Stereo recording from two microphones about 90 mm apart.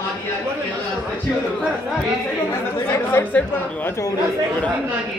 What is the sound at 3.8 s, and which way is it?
Speech, 35° left (ahead or behind).